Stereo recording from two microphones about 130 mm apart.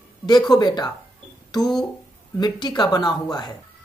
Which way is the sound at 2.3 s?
35° left (ahead or behind).